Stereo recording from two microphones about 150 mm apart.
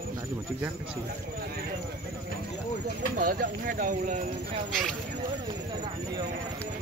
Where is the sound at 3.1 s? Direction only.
75° right (ahead or behind); by 4.2 s 60° right (ahead or behind).